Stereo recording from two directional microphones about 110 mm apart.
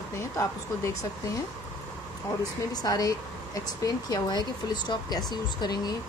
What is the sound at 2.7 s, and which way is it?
Speech, 35° left (ahead or behind).